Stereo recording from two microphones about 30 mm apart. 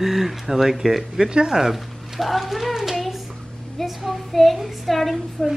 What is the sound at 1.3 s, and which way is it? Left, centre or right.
Speech, right.